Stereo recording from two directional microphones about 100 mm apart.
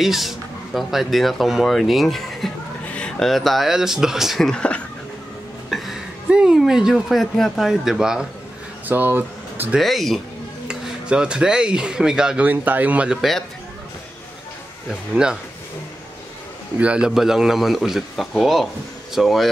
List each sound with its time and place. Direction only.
0.0 s speech: 5° right (ahead or behind)
5.7 s a sound: centre (ahead or behind)
6.2 s speech: 10° right (ahead or behind)
8.8 s speech: 20° right (ahead or behind)
9.8 s speech: centre (ahead or behind)
16.7 s speech: 10° right (ahead or behind)